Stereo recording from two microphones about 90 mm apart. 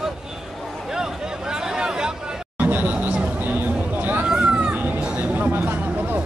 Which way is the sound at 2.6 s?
20° right (ahead or behind).